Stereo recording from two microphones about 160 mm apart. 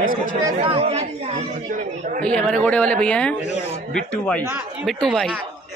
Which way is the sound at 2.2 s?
5° left (ahead or behind).